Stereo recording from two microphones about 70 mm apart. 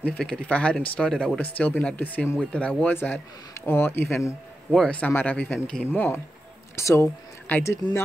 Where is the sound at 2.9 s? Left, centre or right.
Left.